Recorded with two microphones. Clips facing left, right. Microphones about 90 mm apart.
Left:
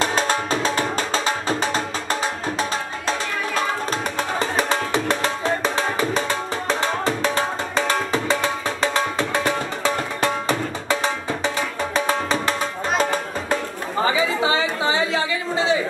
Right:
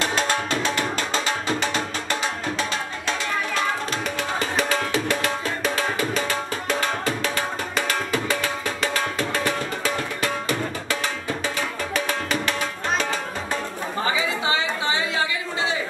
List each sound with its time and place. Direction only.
0.0 s music: 35° left (ahead or behind)
4.4 s music: 35° left (ahead or behind)
14.4 s chatter: 30° left (ahead or behind)